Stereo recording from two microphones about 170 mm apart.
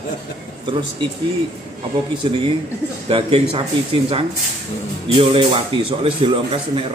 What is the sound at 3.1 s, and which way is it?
Speech, 30° right (ahead or behind).